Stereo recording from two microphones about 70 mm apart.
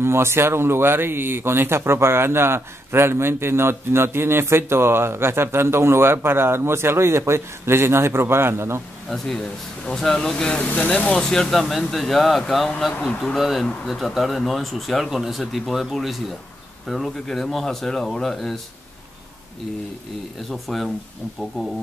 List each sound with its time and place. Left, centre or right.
0.0 s speech: right
9.8 s speech: centre
11.1 s speech: centre
20.6 s speech: centre